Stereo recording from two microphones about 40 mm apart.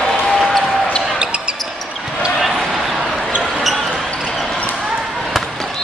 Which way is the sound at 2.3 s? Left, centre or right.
Centre.